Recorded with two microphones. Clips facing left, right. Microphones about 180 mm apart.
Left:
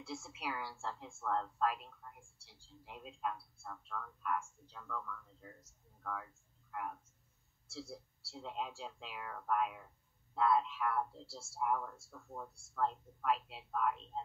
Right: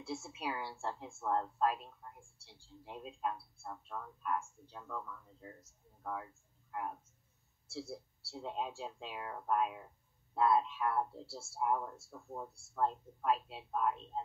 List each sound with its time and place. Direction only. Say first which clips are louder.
0.0 s speech: right 3 dB; 25° right (ahead or behind)